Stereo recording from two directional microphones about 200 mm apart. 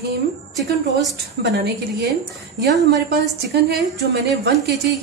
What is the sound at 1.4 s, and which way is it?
Speech, 55° right (ahead or behind).